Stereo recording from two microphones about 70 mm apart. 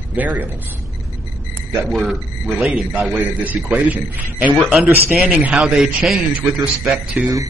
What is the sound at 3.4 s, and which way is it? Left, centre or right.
Speech, right.